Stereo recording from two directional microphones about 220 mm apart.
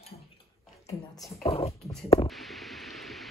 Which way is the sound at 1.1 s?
Centre (ahead or behind).